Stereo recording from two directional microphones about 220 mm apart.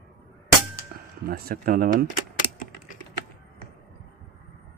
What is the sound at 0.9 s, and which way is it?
Music, 45° right (ahead or behind).